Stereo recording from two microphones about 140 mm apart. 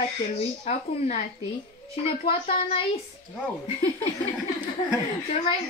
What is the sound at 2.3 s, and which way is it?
Speech, 40° left (ahead or behind).